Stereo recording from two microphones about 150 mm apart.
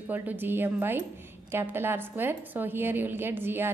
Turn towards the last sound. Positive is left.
turn(degrees=-15)  # may be behind; listen again after turning